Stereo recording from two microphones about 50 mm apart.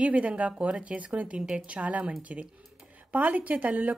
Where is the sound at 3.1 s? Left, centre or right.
Right.